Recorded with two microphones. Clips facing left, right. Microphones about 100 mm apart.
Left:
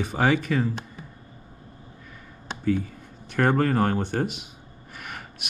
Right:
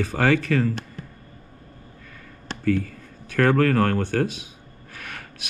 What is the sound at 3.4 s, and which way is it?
Speech, 10° left (ahead or behind).